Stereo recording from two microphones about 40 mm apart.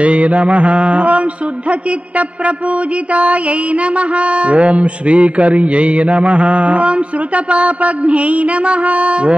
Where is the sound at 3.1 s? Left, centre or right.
Right.